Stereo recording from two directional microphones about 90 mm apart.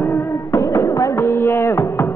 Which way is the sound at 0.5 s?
35° left (ahead or behind).